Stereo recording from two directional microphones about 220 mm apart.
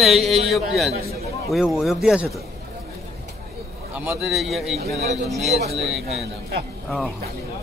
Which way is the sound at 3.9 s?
5° right (ahead or behind).